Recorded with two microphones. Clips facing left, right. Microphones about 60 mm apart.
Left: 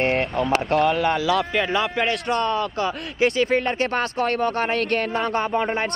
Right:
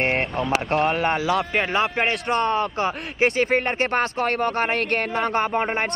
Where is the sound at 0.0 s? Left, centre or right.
Right.